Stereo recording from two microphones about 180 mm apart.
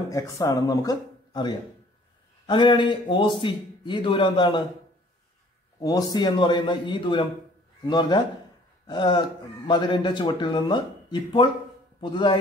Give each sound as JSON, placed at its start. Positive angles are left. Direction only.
{"t": 0.1, "sound": "a man's voice", "side_deg": 20}
{"t": 5.8, "sound": "a man's voice", "side_deg": 20}